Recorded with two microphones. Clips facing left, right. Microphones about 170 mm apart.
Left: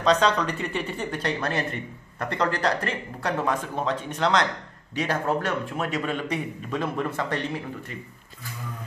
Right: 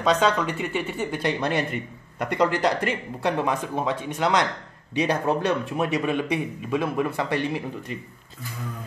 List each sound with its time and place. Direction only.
0.0 s speech: 5° right (ahead or behind)